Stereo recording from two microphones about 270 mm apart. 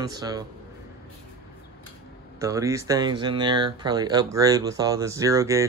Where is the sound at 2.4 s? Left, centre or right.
Centre.